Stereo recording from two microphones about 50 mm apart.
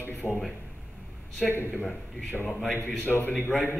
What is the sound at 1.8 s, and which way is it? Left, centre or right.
Speech, left.